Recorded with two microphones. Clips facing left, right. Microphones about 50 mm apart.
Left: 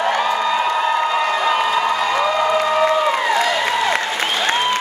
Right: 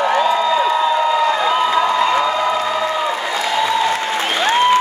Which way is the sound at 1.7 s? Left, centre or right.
Right.